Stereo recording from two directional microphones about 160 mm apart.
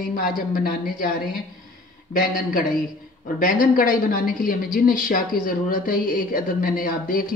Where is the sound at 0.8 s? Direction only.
60° left (ahead or behind).